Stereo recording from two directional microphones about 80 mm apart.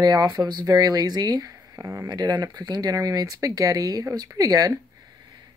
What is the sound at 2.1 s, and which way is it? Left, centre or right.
Speech, right.